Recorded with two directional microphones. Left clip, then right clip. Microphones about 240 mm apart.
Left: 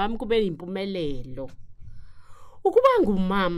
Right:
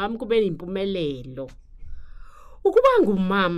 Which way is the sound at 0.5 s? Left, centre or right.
Centre.